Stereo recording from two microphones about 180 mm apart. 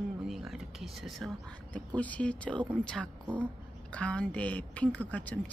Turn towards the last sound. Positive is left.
turn(degrees=10)  # may be behind; listen again after turning